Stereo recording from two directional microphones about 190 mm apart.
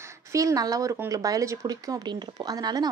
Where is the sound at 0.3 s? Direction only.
15° right (ahead or behind).